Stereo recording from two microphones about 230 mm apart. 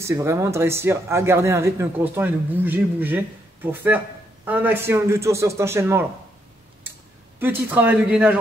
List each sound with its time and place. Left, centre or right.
0.0 s speech: centre
7.3 s speech: centre